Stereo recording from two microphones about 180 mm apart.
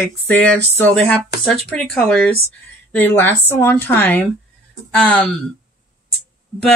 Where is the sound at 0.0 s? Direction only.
10° left (ahead or behind).